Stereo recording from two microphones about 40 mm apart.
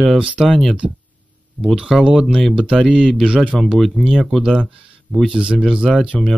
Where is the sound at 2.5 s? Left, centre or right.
Right.